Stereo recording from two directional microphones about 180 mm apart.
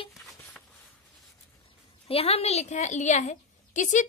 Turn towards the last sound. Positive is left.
turn(degrees=45)  # may be behind; listen again after turning